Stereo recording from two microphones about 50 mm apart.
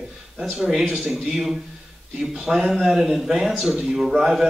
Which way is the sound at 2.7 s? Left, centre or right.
Centre.